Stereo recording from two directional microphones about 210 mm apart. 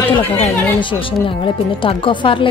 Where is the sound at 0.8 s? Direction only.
25° left (ahead or behind).